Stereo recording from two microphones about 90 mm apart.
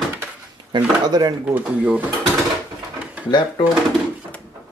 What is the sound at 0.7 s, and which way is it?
Speech, 55° right (ahead or behind).